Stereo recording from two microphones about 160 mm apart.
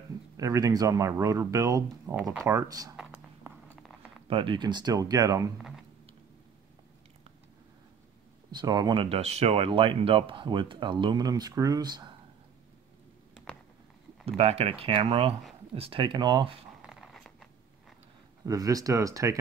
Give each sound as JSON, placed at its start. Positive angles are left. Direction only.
{"t": 0.4, "sound": "speech", "side_deg": -20}
{"t": 3.7, "sound": "a sound", "side_deg": -5}
{"t": 4.3, "sound": "speech", "side_deg": -30}
{"t": 5.6, "sound": "computer keyboard", "side_deg": 0}
{"t": 8.5, "sound": "speech", "side_deg": -25}
{"t": 13.5, "sound": "a sound", "side_deg": 5}
{"t": 14.2, "sound": "speech", "side_deg": -40}
{"t": 16.8, "sound": "dog", "side_deg": -5}
{"t": 18.4, "sound": "speech", "side_deg": -20}